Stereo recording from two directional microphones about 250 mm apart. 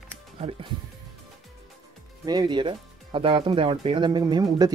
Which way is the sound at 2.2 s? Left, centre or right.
Centre.